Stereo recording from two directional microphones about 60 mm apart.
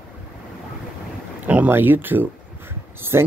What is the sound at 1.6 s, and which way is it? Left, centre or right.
Speech, right.